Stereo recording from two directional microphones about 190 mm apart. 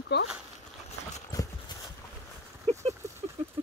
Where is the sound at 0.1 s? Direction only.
60° left (ahead or behind).